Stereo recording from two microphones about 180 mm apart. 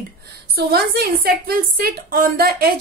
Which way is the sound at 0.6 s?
60° right (ahead or behind).